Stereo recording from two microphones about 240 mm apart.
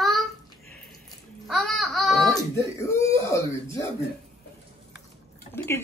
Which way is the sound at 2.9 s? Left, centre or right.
Centre.